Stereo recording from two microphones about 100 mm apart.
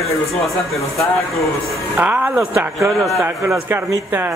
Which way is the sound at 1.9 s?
20° right (ahead or behind).